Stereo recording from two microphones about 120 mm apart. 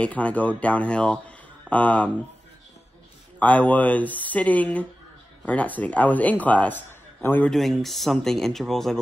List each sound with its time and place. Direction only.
0.0 s a man's voice: 10° left (ahead or behind)
3.3 s a man's voice: 10° left (ahead or behind)
7.5 s speech: centre (ahead or behind)